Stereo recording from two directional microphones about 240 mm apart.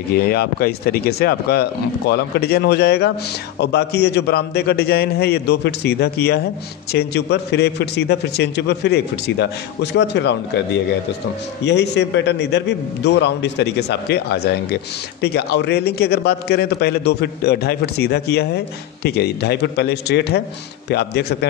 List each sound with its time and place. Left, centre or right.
0.3 s a man's voice: left
11.6 s a man's voice: left